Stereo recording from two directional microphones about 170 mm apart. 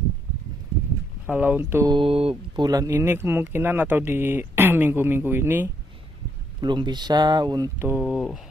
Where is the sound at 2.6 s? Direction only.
20° right (ahead or behind).